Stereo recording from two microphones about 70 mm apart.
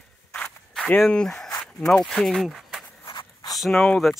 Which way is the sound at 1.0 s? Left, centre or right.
Centre.